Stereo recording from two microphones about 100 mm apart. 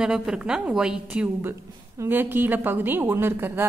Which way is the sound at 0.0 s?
5° right (ahead or behind).